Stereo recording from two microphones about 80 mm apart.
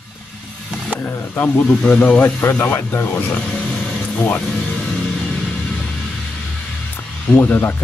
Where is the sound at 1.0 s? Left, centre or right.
Left.